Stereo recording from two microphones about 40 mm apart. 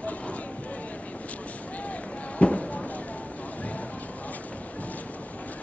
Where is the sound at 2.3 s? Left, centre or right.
Left.